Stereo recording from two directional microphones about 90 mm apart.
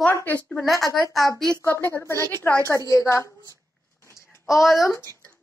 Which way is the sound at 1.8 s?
30° left (ahead or behind).